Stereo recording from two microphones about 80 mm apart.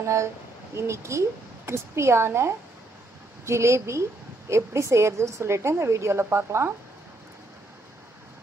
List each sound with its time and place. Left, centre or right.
0.7 s a woman's voice: right